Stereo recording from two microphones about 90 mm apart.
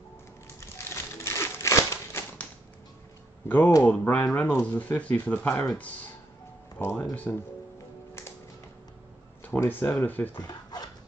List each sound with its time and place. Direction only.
0.6 s crumpling: 30° left (ahead or behind)
3.4 s speech: 20° left (ahead or behind)
6.8 s speech: 25° left (ahead or behind)
9.6 s speech: 25° left (ahead or behind)
10.3 s dog: 50° left (ahead or behind)